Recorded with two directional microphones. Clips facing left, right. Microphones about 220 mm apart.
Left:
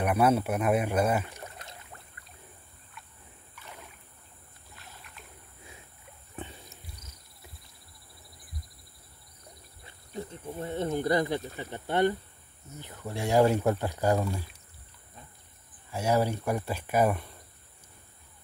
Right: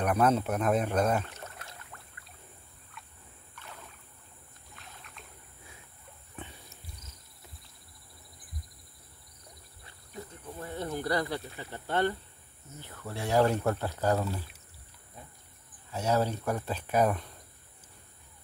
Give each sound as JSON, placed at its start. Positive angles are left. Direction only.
{"t": 0.0, "sound": "speech", "side_deg": 10}
{"t": 3.6, "sound": "rowboat", "side_deg": 10}
{"t": 4.7, "sound": "rowboat", "side_deg": 5}
{"t": 9.8, "sound": "snake", "side_deg": 25}
{"t": 11.5, "sound": "speech", "side_deg": 20}
{"t": 15.9, "sound": "speech", "side_deg": 10}